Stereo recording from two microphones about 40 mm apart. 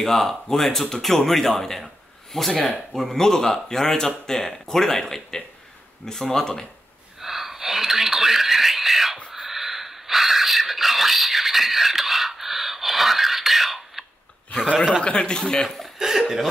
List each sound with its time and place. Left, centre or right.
0.0 s speech: centre
7.2 s a sound: centre
15.0 s speech: left
15.6 s speech: centre
16.0 s speech: centre